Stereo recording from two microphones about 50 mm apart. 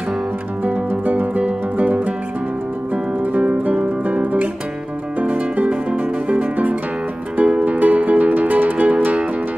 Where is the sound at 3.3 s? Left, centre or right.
Right.